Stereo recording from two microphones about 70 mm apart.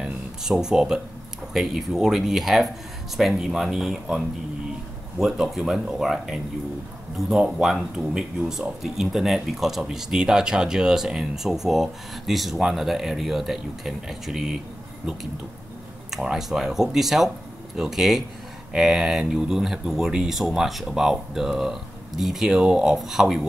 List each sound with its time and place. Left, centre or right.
0.0 s speech: centre
5.2 s speech: centre
16.1 s speech: centre